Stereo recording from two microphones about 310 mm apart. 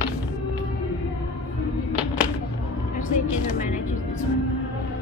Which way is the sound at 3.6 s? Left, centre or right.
Left.